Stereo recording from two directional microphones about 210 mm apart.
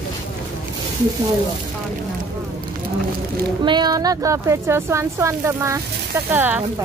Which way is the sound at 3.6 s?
20° right (ahead or behind).